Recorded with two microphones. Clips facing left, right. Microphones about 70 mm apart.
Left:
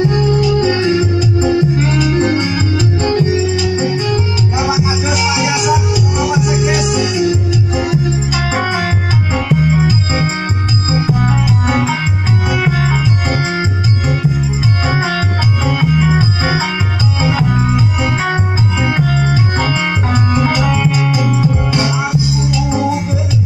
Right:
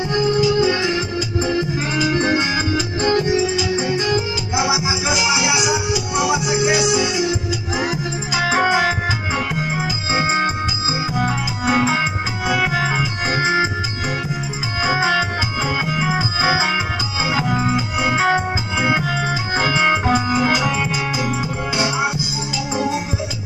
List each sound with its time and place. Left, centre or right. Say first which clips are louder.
0.4 s music: left 3 dB; centre
13.0 s music: left 3 dB; centre